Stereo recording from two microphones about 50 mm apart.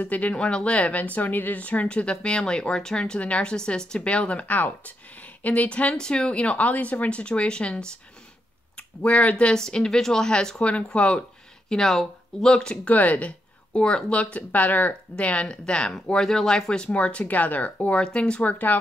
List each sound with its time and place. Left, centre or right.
0.0 s speech: left
9.6 s speech: centre
11.7 s speech: centre
12.8 s speech: left
13.7 s speech: centre
15.1 s speech: left
16.9 s speech: left
18.0 s speech: centre
18.4 s speech: left